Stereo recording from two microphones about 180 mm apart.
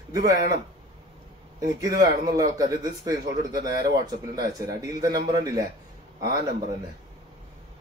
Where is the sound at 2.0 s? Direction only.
20° right (ahead or behind).